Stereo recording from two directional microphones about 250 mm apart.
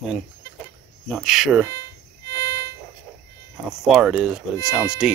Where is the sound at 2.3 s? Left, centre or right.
Centre.